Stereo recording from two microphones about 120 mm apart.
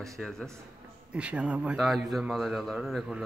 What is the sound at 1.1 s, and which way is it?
Speech, 10° right (ahead or behind).